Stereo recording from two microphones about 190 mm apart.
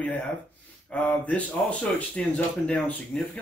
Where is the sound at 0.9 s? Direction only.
5° left (ahead or behind).